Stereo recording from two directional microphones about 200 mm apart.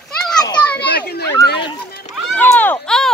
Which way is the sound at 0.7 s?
55° left (ahead or behind).